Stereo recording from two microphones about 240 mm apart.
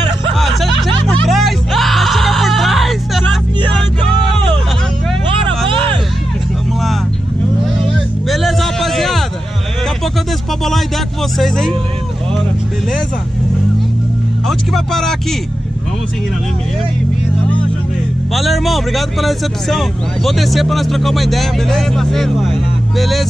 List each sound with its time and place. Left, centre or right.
0.3 s music: centre
5.7 s music: right
7.8 s music: centre
11.3 s vehicle: centre
14.5 s speech: centre
18.3 s speech: centre